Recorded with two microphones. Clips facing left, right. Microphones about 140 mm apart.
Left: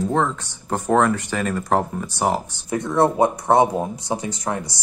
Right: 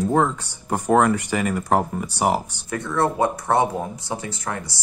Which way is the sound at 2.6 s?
20° left (ahead or behind).